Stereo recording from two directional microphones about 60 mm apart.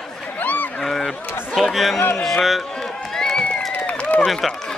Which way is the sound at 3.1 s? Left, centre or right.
Centre.